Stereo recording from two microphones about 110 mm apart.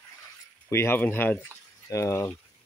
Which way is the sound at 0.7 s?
25° left (ahead or behind).